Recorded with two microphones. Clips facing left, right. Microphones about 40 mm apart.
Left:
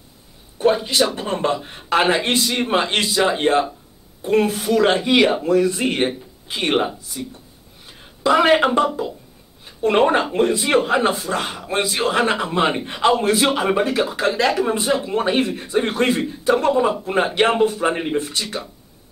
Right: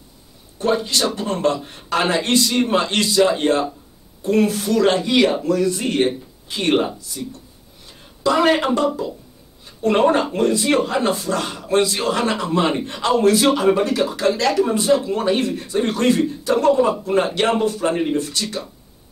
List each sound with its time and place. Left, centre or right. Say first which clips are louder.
0.6 s a man's voice: left 2 dB; centre